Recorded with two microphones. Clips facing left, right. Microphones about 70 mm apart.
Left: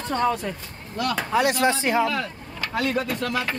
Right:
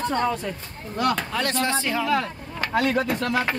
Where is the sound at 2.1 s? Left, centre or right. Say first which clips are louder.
Right 3 dB; right.